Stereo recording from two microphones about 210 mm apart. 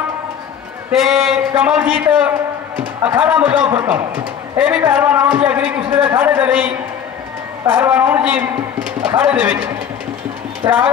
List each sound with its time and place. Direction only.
0.9 s a man's voice: centre (ahead or behind)
10.6 s a man's voice: 15° right (ahead or behind)